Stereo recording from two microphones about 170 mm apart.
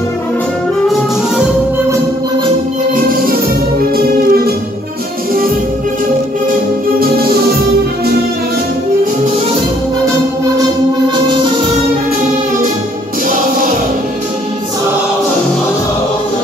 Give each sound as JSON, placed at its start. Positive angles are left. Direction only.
{"t": 3.1, "sound": "music", "side_deg": -60}